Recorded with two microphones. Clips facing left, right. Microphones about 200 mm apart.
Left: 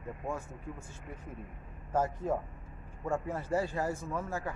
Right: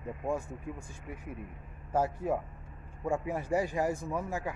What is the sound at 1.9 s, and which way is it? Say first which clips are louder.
A man's voice: right 1 dB; 10° right (ahead or behind).